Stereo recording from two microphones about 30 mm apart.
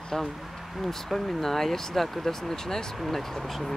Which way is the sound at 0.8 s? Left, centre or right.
Centre.